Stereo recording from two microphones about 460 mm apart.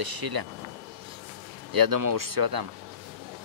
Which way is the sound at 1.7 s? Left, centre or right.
Right.